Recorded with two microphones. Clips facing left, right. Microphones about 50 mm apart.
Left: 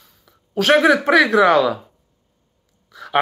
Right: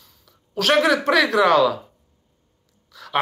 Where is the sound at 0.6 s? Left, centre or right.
Centre.